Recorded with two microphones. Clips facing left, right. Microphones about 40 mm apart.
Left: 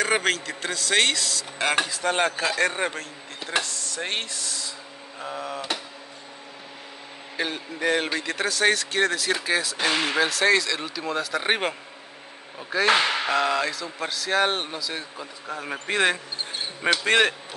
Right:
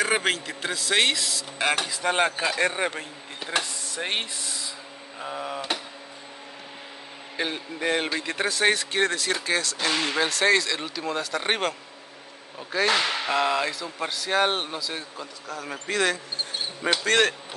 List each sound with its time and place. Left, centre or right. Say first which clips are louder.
0.0 s speech: left 1 dB; centre
3.0 s speech: even; centre
7.3 s a man's voice: even; centre
12.8 s speech: left 3 dB; left
13.3 s a man's voice: left 1 dB; centre
15.4 s speech: left 3 dB; left